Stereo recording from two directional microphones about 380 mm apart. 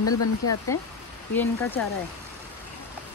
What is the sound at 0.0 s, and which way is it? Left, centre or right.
Speech, left.